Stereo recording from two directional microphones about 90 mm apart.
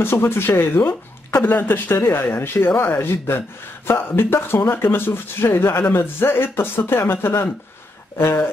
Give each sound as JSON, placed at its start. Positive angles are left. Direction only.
{"t": 0.0, "sound": "speech", "side_deg": 25}